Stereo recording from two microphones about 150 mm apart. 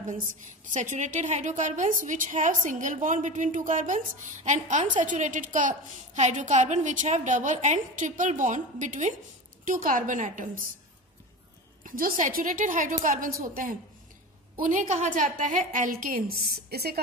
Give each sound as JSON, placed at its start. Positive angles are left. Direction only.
{"t": 0.7, "sound": "a woman's voice", "side_deg": -55}
{"t": 11.8, "sound": "a woman's voice", "side_deg": -65}
{"t": 14.6, "sound": "a woman's voice", "side_deg": -55}